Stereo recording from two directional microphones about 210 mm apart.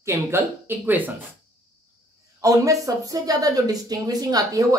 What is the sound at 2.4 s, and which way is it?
Speech, 15° right (ahead or behind).